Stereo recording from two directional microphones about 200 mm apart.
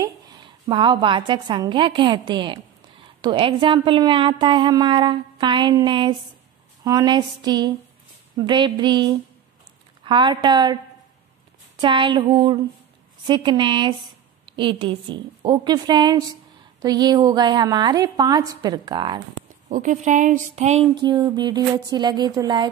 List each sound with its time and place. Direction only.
0.0 s a woman's voice: 20° right (ahead or behind)
11.8 s a woman's voice: 25° right (ahead or behind)
19.7 s a woman's voice: 40° right (ahead or behind); by 22.7 s 20° right (ahead or behind)